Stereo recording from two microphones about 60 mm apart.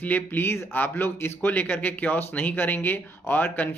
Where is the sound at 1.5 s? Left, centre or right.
Left.